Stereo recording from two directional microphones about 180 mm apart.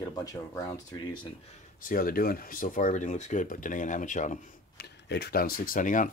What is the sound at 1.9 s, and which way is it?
Speech, 55° left (ahead or behind).